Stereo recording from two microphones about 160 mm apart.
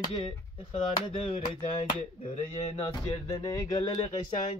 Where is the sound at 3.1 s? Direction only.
25° left (ahead or behind).